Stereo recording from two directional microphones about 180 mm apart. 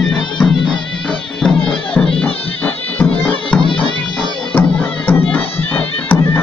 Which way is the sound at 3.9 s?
25° left (ahead or behind).